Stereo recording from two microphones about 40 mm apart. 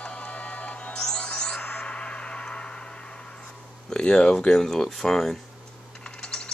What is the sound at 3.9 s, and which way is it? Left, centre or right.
Speech, left.